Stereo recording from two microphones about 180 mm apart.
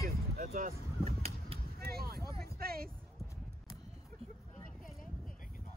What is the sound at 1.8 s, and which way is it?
Vehicle, 60° right (ahead or behind).